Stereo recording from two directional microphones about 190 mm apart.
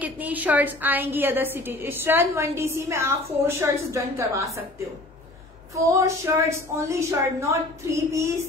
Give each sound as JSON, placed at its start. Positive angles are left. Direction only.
{"t": 0.0, "sound": "a woman's voice", "side_deg": -10}
{"t": 5.9, "sound": "a woman's voice", "side_deg": -15}